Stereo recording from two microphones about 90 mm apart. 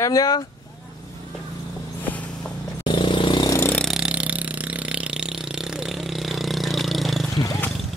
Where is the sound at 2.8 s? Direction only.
65° left (ahead or behind).